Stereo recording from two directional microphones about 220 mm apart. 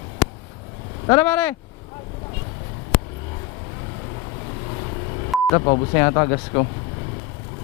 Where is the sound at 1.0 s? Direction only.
10° left (ahead or behind).